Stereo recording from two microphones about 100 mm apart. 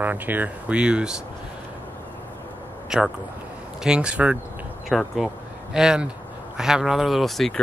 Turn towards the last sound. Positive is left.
turn(degrees=5)  # may be behind; listen again after turning